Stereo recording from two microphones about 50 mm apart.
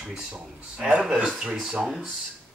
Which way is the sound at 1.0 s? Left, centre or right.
Centre.